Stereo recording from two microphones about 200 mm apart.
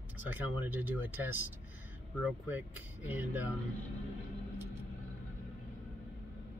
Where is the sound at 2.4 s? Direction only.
10° right (ahead or behind).